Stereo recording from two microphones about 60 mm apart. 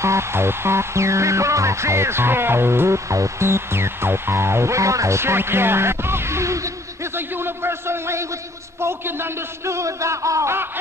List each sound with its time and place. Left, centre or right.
0.0 s music: right
3.1 s music: right
7.2 s a man's voice: right
8.8 s music: right
9.8 s a sound: right